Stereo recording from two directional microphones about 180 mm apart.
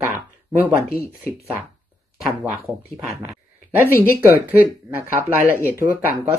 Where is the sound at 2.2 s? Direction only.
Centre (ahead or behind).